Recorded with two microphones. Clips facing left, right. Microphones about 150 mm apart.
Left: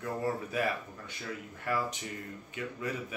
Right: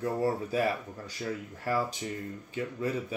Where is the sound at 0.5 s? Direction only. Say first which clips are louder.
Right 4 dB; 30° right (ahead or behind).